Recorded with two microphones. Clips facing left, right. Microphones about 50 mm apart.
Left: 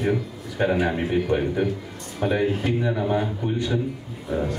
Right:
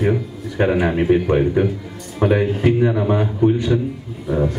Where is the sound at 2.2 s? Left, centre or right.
Right.